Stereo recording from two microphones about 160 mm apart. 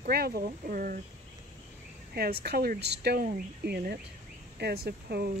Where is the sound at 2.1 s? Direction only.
85° right.